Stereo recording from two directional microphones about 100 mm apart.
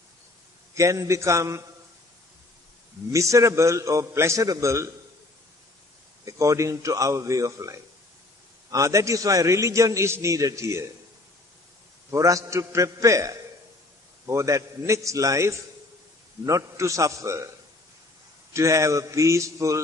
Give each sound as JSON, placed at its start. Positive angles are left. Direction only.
{"t": 0.7, "sound": "a man's voice", "side_deg": -30}
{"t": 3.1, "sound": "a man's voice", "side_deg": -30}
{"t": 6.2, "sound": "a man's voice", "side_deg": -35}
{"t": 12.1, "sound": "a man's voice", "side_deg": -30}
{"t": 18.5, "sound": "a man's voice", "side_deg": -30}